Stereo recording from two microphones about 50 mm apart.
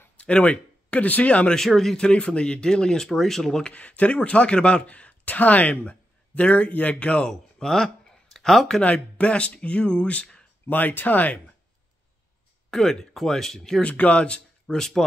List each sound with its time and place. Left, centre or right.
0.2 s speech: left
1.5 s speech: centre
2.0 s speech: centre
3.6 s speech: left
7.2 s speech: centre
8.9 s speech: left
10.7 s speech: left
12.7 s speech: centre
13.7 s speech: left; by 15.0 s centre